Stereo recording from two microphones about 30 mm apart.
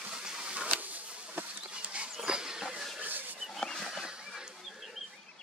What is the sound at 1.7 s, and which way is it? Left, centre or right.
Dog, right.